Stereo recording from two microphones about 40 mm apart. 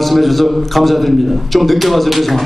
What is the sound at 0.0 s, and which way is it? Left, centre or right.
A man's voice, centre.